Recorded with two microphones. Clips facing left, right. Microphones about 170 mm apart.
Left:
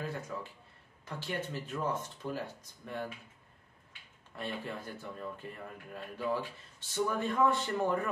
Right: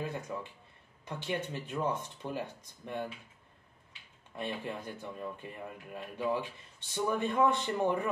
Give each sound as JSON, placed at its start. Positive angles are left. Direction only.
{"t": 0.0, "sound": "a man's voice", "side_deg": -20}
{"t": 4.4, "sound": "a man's voice", "side_deg": -15}